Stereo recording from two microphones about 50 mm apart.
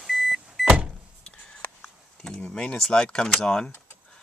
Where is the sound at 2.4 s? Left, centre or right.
Left.